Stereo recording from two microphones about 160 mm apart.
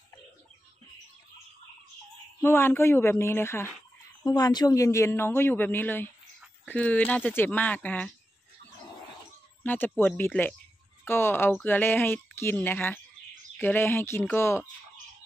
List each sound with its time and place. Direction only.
2.4 s speech: 15° left (ahead or behind)
4.2 s speech: 25° left (ahead or behind); by 8.1 s 10° left (ahead or behind)
9.6 s speech: 10° left (ahead or behind)